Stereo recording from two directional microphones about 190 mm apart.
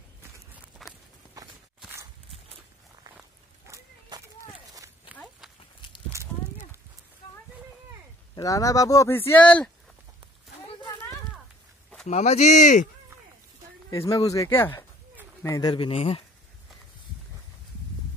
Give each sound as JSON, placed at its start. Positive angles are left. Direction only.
{"t": 0.8, "sound": "walk", "side_deg": 0}
{"t": 3.2, "sound": "walk", "side_deg": -15}
{"t": 6.1, "sound": "a sound", "side_deg": -15}
{"t": 8.4, "sound": "speech", "side_deg": 20}
{"t": 12.1, "sound": "speech", "side_deg": 35}
{"t": 13.8, "sound": "speech", "side_deg": 20}